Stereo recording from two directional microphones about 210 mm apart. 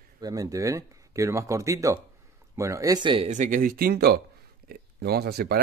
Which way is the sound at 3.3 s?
35° right (ahead or behind).